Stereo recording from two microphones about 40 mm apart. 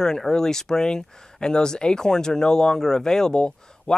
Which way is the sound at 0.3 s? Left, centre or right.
Centre.